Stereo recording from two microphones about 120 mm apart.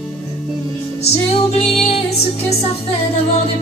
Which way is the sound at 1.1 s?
55° left (ahead or behind).